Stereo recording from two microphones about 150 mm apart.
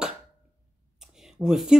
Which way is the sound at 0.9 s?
5° right (ahead or behind).